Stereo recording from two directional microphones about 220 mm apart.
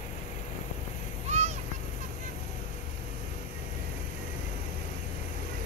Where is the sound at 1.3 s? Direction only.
30° right (ahead or behind).